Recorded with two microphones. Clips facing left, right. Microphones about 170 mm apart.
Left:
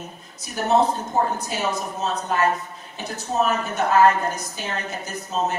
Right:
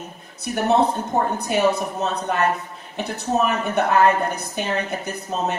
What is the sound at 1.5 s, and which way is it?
A woman's voice, 60° right (ahead or behind).